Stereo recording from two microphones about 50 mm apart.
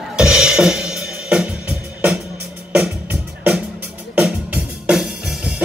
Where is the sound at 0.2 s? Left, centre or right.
Centre.